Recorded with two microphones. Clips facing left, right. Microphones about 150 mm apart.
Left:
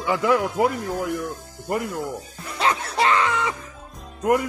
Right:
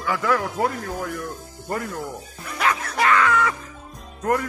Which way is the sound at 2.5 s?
30° left (ahead or behind).